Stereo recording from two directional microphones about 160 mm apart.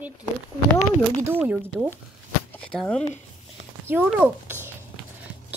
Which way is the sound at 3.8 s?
10° right (ahead or behind).